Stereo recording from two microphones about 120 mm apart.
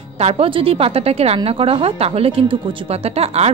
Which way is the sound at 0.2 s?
60° right (ahead or behind).